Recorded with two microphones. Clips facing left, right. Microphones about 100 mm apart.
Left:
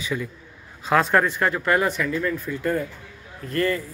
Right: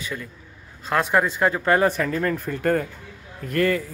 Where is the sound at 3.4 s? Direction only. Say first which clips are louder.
Right 2 dB; 75° right (ahead or behind).